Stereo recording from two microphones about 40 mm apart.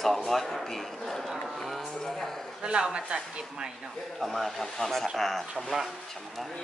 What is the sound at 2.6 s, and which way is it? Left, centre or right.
Speech, right.